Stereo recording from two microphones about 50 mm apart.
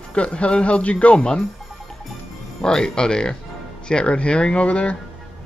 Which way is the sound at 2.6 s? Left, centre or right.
Centre.